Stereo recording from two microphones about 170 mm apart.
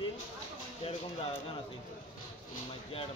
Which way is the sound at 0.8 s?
35° left (ahead or behind).